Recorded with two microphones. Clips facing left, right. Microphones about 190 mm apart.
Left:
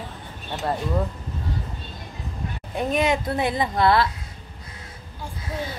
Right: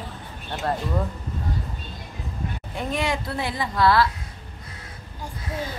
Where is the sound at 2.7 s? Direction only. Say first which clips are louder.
Left 5 dB; 20° left (ahead or behind).